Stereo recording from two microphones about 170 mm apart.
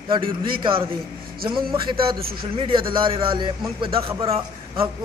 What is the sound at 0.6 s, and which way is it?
A man's voice, 30° right (ahead or behind).